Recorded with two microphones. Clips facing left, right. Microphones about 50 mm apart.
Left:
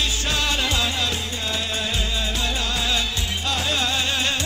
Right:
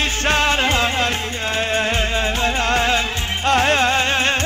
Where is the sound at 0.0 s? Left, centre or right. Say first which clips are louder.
Right 6 dB; right.